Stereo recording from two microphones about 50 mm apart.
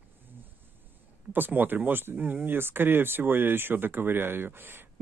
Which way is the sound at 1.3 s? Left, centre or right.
Right.